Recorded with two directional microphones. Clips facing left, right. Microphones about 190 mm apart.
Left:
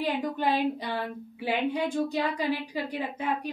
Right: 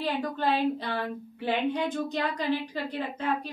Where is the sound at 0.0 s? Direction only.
15° left (ahead or behind).